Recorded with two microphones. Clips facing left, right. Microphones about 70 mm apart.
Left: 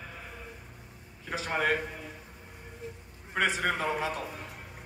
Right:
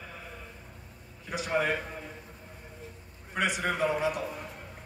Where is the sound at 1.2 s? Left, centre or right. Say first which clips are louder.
Right 3 dB; left.